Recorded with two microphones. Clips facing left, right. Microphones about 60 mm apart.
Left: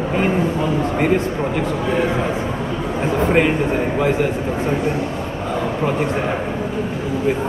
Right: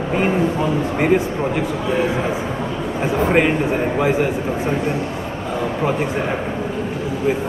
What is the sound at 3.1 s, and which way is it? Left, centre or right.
Speech, centre.